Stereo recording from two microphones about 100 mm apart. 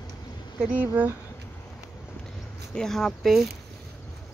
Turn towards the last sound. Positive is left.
turn(degrees=0)  # may be behind; listen again after turning